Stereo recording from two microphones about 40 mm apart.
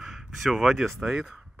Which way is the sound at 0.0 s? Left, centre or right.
Centre.